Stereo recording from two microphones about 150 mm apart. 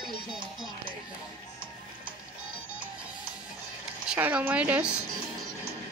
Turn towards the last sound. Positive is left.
turn(degrees=-10)  # may be behind; listen again after turning